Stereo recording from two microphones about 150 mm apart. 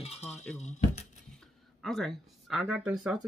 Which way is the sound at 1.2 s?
Centre (ahead or behind).